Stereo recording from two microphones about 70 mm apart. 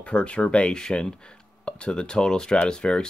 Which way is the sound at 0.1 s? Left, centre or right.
Centre.